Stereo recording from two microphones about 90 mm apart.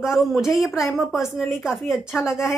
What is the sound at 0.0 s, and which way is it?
Speech, 5° right (ahead or behind).